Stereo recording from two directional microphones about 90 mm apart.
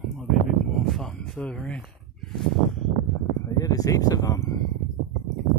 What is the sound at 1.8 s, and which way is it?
Chicken, 5° left (ahead or behind).